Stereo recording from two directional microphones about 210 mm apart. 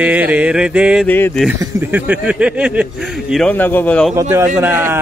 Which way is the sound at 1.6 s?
10° right (ahead or behind).